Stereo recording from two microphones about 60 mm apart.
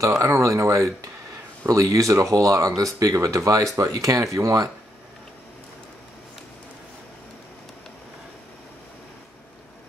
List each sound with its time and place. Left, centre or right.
0.2 s speech: right
1.7 s speech: right